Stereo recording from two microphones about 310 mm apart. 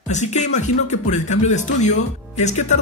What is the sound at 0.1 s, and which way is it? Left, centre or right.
A man's voice, left.